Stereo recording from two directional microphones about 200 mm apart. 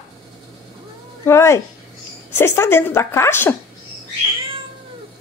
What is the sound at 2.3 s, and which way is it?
A woman's voice, 10° left (ahead or behind).